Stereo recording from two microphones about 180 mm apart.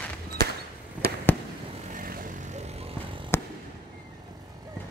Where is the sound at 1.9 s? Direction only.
50° right (ahead or behind); by 3.2 s 35° right (ahead or behind).